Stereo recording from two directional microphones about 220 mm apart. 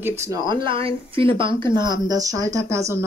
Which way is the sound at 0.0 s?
20° right (ahead or behind).